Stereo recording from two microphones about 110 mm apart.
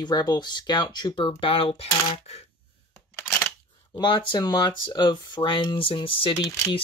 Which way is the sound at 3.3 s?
15° left (ahead or behind).